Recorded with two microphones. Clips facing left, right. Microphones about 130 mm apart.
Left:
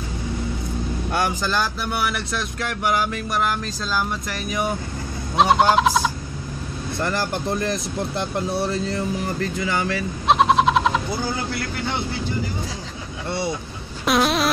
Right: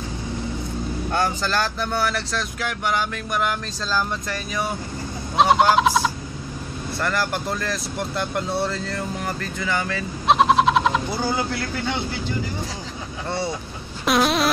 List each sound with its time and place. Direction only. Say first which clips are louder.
1.4 s speech: even; 10° left (ahead or behind)
4.3 s speech: left 1 dB; 15° left (ahead or behind)
5.4 s fowl: even; centre (ahead or behind)
7.0 s speech: even; 20° left (ahead or behind)
10.2 s a sound: even; centre (ahead or behind)
14.0 s a sound: even; centre (ahead or behind)